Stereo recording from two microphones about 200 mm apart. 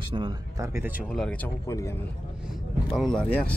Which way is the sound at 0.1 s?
25° right (ahead or behind).